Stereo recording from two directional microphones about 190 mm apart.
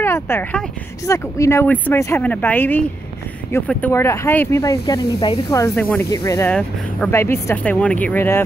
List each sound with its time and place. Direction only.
0.0 s speech: 10° left (ahead or behind)